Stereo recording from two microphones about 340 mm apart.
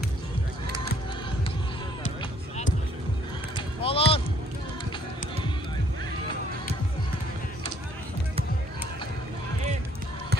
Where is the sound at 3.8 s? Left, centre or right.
Centre.